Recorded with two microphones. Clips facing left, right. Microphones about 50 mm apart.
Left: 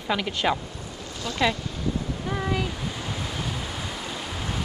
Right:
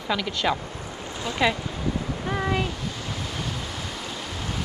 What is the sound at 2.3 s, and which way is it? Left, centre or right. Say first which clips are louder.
Waves: right 2 dB; centre.